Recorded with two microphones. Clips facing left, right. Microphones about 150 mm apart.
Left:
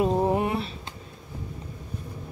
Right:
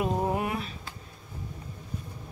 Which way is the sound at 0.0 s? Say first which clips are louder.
Left 5 dB; 25° left (ahead or behind).